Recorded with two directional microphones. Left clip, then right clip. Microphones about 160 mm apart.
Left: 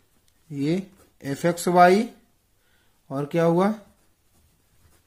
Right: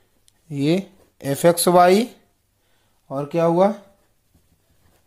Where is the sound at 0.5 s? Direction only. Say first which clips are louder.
Right 6 dB; 25° right (ahead or behind).